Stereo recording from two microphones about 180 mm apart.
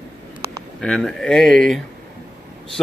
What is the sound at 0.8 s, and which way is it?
Speech, 5° left (ahead or behind).